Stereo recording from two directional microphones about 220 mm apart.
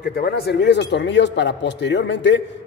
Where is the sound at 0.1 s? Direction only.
45° left (ahead or behind).